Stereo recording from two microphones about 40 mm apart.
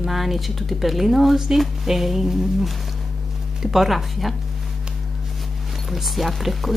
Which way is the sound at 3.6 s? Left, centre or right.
Centre.